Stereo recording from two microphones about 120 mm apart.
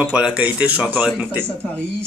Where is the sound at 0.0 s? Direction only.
5° right (ahead or behind).